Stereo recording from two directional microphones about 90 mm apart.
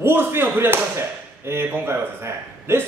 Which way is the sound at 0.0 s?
25° right (ahead or behind).